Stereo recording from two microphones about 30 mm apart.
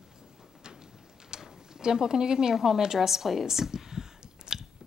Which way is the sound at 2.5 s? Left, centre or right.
Centre.